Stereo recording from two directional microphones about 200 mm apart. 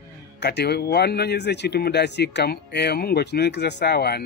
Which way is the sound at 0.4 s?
55° left (ahead or behind).